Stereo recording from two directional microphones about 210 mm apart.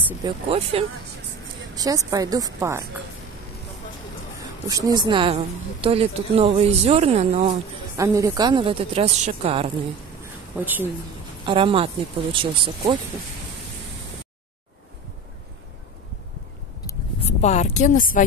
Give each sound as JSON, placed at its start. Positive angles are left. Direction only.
{"t": 0.5, "sound": "speech", "side_deg": -30}
{"t": 1.8, "sound": "a woman's voice", "side_deg": -15}
{"t": 4.6, "sound": "speech", "side_deg": -15}
{"t": 7.9, "sound": "speech", "side_deg": -15}
{"t": 10.2, "sound": "a sound", "side_deg": -10}
{"t": 11.4, "sound": "speech", "side_deg": -25}
{"t": 17.2, "sound": "speech", "side_deg": 30}